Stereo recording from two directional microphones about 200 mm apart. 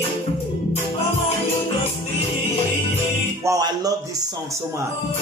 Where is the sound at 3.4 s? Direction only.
15° right (ahead or behind).